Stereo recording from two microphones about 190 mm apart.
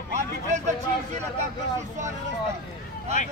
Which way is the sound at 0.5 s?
40° right (ahead or behind).